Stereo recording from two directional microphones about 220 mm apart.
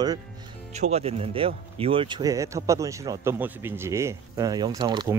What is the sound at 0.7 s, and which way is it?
Speech, 30° right (ahead or behind).